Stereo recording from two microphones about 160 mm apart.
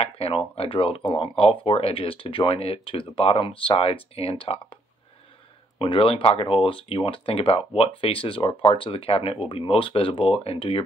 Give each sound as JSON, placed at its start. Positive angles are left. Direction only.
{"t": 0.0, "sound": "speech", "side_deg": 35}
{"t": 5.8, "sound": "speech", "side_deg": 35}